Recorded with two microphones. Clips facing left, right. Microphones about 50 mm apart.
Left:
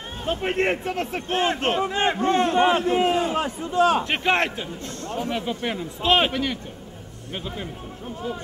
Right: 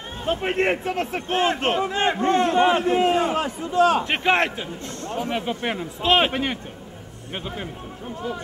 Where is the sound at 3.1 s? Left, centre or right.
Right.